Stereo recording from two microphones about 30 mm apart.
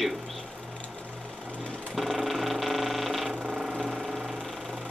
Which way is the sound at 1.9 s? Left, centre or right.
Centre.